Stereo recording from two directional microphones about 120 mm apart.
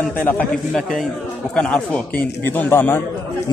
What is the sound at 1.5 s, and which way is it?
Speech, 5° left (ahead or behind).